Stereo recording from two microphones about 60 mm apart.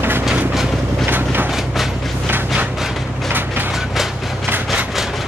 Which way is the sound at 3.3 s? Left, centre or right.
Right.